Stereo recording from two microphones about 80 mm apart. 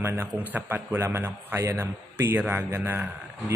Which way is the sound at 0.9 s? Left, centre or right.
Right.